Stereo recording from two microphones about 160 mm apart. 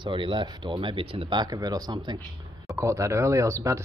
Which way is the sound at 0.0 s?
30° right (ahead or behind).